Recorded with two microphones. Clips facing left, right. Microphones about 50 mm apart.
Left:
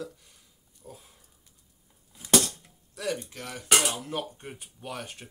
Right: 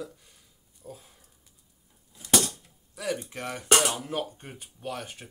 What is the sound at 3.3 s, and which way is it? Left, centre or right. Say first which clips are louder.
Speech: right 4 dB; right.